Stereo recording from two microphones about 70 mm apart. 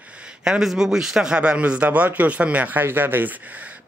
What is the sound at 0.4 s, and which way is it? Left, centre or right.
Speech, centre.